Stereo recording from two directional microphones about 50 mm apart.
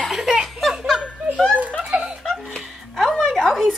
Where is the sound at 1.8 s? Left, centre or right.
Centre.